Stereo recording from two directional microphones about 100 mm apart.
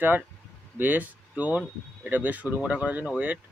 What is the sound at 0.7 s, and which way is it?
Speech, 15° right (ahead or behind).